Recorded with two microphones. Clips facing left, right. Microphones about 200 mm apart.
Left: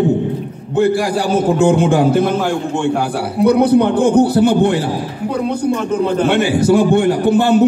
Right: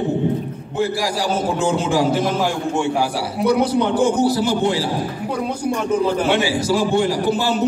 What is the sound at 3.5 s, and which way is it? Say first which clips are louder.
A man's voice: left 6 dB; 60° left (ahead or behind).